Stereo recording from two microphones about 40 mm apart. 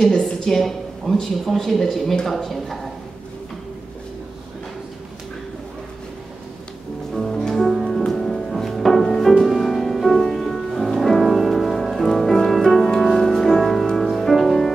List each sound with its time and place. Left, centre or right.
0.0 s speech: centre
0.5 s a woman's voice: centre
7.2 s music: centre